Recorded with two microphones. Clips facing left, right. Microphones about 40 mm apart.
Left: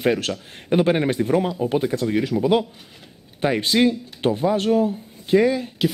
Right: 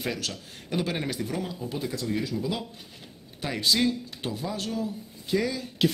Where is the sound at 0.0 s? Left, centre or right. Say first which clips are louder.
Left 11 dB; left.